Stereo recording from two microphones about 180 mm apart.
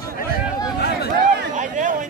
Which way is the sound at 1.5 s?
45° right (ahead or behind).